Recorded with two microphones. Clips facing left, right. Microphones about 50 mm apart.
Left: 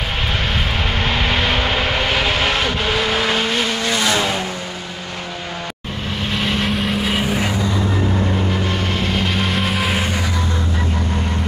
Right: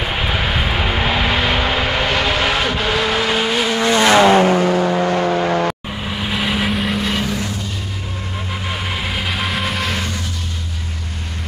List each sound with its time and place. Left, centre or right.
1.0 s vehicle: centre
3.8 s vehicle: right
4.2 s vehicle: right
6.3 s vehicle: centre